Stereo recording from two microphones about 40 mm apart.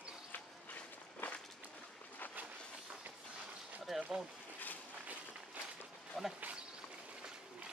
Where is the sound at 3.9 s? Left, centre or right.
Centre.